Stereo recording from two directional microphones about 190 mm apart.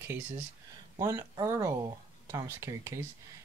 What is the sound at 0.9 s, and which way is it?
Speech, 15° right (ahead or behind).